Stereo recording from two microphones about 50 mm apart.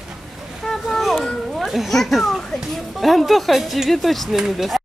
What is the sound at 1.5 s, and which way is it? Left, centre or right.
Cat, centre.